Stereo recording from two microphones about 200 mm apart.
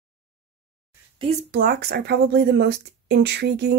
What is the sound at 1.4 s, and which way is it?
Speech, 50° right (ahead or behind).